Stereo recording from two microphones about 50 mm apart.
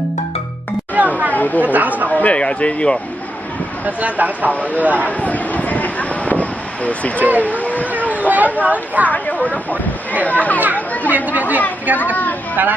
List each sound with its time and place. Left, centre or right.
0.9 s children playing: right
1.3 s chatter: left
1.6 s speech: right
2.0 s speech: left
3.8 s speech: right
5.0 s a sound: left
8.3 s speech: right
9.1 s a child's voice: left
11.1 s speech: right